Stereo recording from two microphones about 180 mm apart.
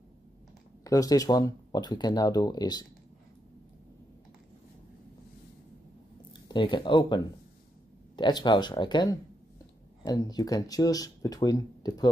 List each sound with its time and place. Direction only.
0.8 s speech: 20° left (ahead or behind)
6.5 s speech: 25° left (ahead or behind)
8.2 s speech: 25° left (ahead or behind)